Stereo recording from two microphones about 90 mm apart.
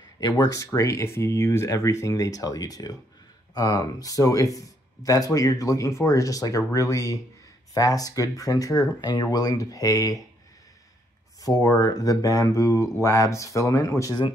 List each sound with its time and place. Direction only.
0.2 s speech: 45° left (ahead or behind)
11.4 s speech: 40° left (ahead or behind)